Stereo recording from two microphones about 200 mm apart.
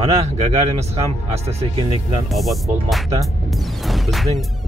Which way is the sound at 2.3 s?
Centre (ahead or behind).